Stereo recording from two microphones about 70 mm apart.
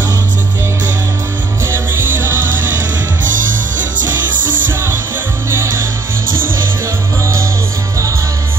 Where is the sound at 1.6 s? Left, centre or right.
Right.